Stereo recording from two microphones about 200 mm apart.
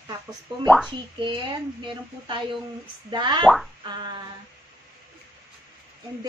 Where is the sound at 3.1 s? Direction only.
20° right (ahead or behind).